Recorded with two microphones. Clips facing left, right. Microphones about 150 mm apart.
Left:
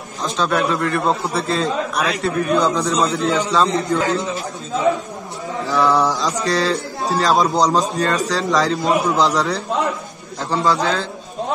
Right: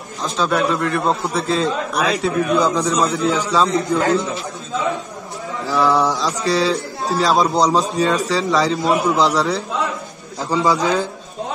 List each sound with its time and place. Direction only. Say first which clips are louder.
0.2 s a man's voice: even; centre (ahead or behind)
5.7 s a man's voice: even; centre (ahead or behind)
10.5 s a man's voice: right 1 dB; 15° right (ahead or behind)